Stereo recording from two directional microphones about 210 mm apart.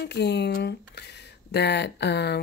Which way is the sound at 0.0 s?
50° left (ahead or behind).